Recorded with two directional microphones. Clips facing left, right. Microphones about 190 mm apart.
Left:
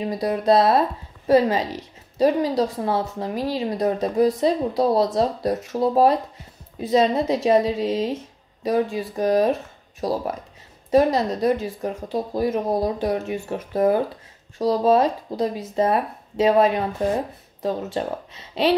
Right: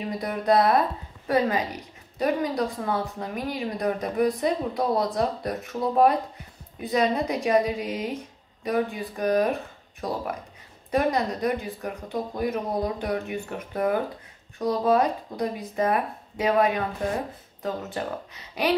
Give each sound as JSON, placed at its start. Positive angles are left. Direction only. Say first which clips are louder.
{"t": 0.2, "sound": "speech", "louder": "left 4 dB", "side_deg": 25}